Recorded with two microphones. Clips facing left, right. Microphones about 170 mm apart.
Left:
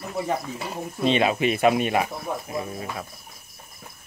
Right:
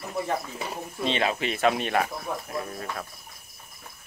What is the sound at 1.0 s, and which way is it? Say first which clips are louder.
Speech: left 6 dB; 15° left (ahead or behind).